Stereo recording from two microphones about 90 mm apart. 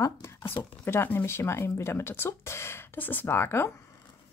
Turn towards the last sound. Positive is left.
turn(degrees=30)  # may be behind; listen again after turning